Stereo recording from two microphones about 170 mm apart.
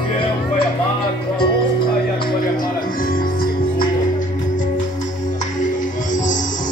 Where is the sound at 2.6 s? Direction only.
55° left (ahead or behind).